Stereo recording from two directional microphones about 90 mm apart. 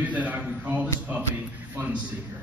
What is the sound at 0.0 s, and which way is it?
Speech, 15° right (ahead or behind).